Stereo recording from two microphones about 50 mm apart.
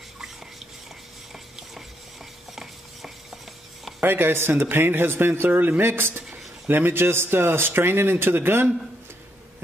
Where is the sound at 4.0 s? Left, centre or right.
Right.